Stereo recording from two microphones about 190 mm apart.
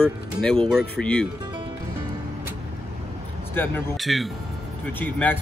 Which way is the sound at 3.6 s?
10° left (ahead or behind).